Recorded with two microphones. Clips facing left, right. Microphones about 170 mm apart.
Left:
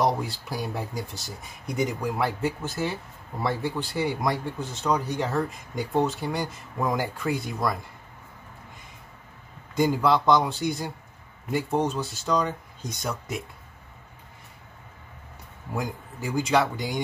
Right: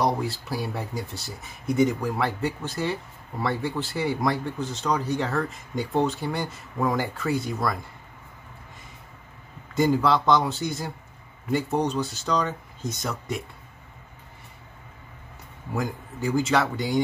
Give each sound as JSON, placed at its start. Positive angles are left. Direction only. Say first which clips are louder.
{"t": 0.0, "sound": "speech", "louder": "even", "side_deg": 0}
{"t": 5.2, "sound": "speech", "louder": "even", "side_deg": 20}
{"t": 5.8, "sound": "speech", "louder": "right 1 dB", "side_deg": 0}
{"t": 9.8, "sound": "speech", "louder": "right 1 dB", "side_deg": 0}
{"t": 15.7, "sound": "speech", "louder": "right 2 dB", "side_deg": 0}